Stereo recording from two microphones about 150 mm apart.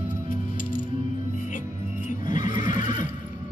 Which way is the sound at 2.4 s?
60° left (ahead or behind).